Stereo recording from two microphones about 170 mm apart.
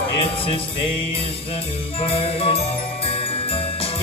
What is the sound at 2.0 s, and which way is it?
Music, 35° left (ahead or behind).